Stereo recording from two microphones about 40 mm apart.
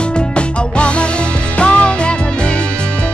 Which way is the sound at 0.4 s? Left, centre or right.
Left.